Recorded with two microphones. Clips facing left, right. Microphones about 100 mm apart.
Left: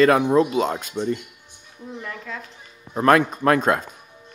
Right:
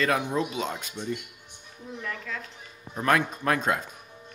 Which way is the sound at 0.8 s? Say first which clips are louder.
Left 8 dB; 80° left.